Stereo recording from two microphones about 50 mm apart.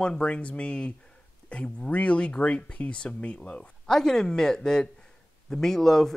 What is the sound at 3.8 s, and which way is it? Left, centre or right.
Speech, centre.